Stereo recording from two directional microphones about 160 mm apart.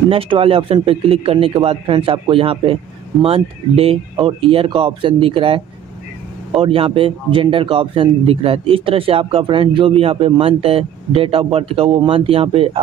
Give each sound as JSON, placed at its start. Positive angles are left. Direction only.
{"t": 0.1, "sound": "speech", "side_deg": -35}